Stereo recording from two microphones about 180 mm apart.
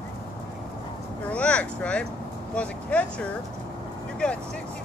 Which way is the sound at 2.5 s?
5° left (ahead or behind).